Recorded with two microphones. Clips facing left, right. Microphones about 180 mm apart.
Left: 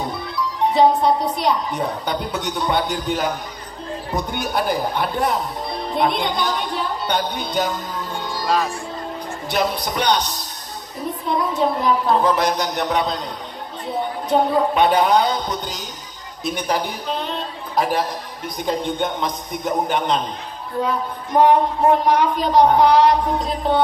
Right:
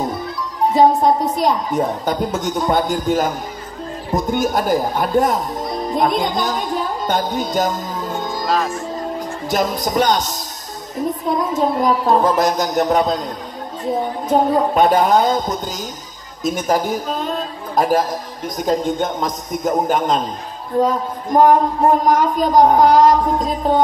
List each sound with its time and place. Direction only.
0.7 s a woman's voice: 45° right (ahead or behind)
8.5 s speech: centre (ahead or behind)
9.5 s a woman's voice: 45° right (ahead or behind)
14.3 s a woman's voice: 40° right (ahead or behind)